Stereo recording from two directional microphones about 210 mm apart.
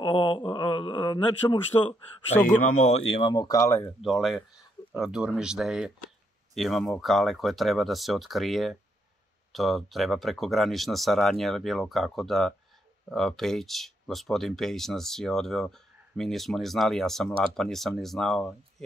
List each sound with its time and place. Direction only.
0.0 s speech: 20° left (ahead or behind)
2.4 s speech: 40° left (ahead or behind)
3.1 s speech: 25° left (ahead or behind)
4.0 s speech: centre (ahead or behind)